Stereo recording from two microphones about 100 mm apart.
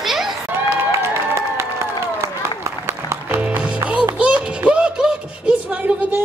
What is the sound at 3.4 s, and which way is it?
Music, 15° right (ahead or behind).